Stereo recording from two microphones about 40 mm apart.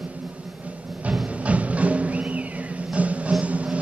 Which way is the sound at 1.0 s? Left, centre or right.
Right.